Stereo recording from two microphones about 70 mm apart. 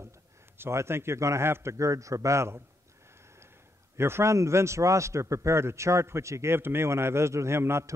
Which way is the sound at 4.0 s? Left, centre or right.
Right.